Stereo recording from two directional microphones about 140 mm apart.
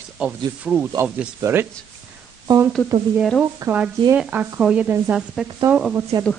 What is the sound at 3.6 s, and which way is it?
Speech, 25° right (ahead or behind).